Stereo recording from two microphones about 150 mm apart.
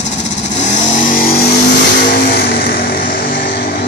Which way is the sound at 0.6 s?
55° left (ahead or behind).